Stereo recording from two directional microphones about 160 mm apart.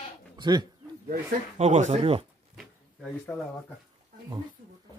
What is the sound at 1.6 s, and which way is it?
Speech, 45° right (ahead or behind).